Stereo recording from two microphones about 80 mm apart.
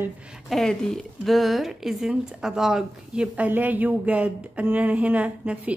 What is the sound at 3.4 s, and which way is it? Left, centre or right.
Speech, right.